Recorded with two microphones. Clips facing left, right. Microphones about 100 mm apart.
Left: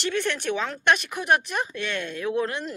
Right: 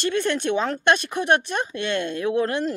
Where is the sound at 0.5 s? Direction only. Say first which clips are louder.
Right 1 dB; 30° right (ahead or behind).